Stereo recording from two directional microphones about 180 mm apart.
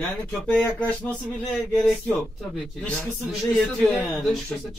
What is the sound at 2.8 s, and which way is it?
A man's voice, 5° left (ahead or behind).